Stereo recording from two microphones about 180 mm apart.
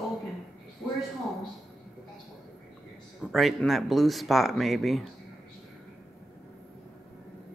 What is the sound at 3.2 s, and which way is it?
Speech, centre (ahead or behind).